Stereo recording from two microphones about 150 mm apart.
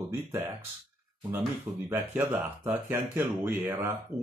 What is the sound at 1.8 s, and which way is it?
Speech, 15° right (ahead or behind).